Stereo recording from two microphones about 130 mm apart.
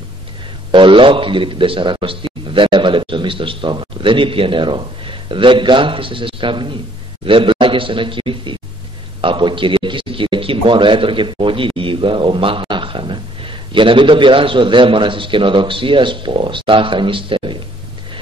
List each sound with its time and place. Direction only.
0.7 s a man's voice: 40° right (ahead or behind)